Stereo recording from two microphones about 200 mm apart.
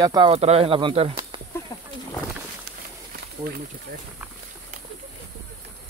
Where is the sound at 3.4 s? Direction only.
50° right (ahead or behind).